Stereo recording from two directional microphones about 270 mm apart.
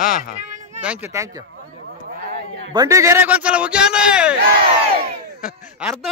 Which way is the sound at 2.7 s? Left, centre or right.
Centre.